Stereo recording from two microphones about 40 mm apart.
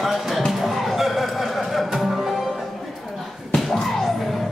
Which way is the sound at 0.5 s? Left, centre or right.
Centre.